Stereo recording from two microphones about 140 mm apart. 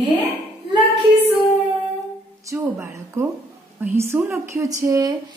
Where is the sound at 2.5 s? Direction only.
20° right (ahead or behind).